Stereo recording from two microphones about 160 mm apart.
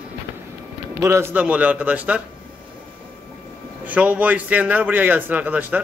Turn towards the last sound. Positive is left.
turn(degrees=-10)  # may be behind; listen again after turning